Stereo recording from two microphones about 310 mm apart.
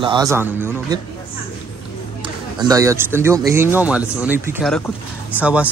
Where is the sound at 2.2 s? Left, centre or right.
Centre.